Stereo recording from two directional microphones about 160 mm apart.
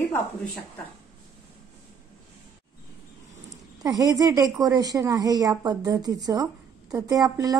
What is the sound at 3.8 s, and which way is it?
A woman's voice, 20° right (ahead or behind).